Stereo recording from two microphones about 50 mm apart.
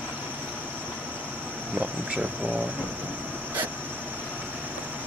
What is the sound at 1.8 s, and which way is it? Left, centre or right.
Speech, right.